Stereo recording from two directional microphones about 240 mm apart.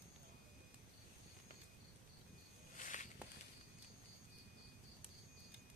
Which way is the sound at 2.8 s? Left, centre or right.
Left.